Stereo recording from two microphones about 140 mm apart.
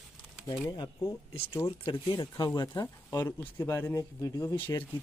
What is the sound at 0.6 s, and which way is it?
Speech, 30° left (ahead or behind).